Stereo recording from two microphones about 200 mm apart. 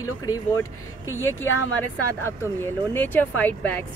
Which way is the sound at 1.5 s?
85° left.